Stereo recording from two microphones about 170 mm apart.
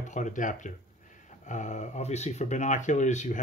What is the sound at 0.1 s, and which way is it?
Speech, 50° left (ahead or behind).